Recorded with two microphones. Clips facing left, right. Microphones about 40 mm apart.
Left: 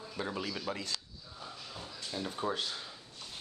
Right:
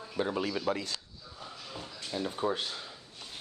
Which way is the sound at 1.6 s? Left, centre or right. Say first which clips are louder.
Right 2 dB; centre.